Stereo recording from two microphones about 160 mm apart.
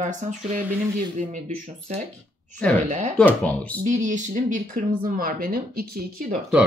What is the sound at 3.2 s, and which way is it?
Speech, 10° left (ahead or behind).